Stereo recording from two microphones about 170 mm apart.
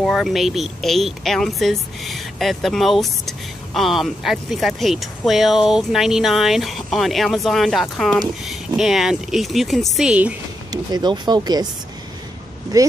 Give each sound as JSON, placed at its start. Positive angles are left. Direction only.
{"t": 0.0, "sound": "a woman's voice", "side_deg": 0}
{"t": 10.7, "sound": "speech", "side_deg": -25}
{"t": 12.7, "sound": "speech", "side_deg": -20}